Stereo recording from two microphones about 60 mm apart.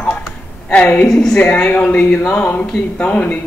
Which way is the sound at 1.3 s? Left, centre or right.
Left.